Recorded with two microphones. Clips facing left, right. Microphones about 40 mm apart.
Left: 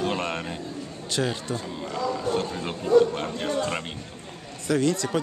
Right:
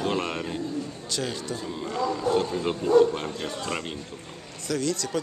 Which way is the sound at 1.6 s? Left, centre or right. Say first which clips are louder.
Right 1 dB; centre.